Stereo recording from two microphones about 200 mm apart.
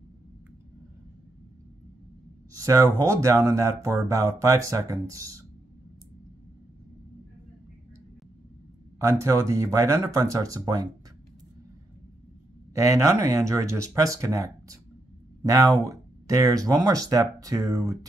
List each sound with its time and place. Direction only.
2.6 s speech: 15° right (ahead or behind)
9.0 s speech: 15° right (ahead or behind)
12.7 s speech: 15° right (ahead or behind)